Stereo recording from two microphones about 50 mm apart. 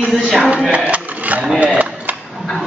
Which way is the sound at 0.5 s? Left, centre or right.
Right.